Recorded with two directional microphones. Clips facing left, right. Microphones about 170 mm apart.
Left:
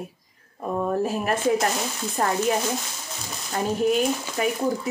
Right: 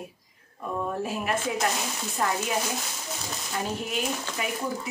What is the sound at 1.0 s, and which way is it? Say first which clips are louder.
Speech: left 5 dB; 40° left (ahead or behind).